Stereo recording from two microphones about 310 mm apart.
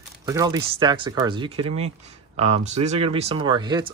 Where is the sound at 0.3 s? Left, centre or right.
Centre.